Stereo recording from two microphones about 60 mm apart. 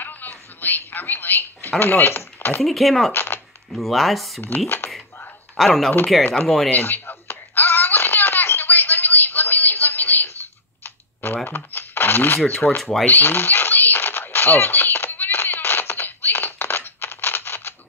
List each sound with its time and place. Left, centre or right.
0.0 s speech: left
2.6 s speech: centre
3.1 s speech: left
3.7 s speech: centre
4.6 s speech: left
5.6 s speech: centre
6.7 s baby laughter: left
11.4 s shuffling cards: left
12.5 s speech: centre
13.0 s a sound: left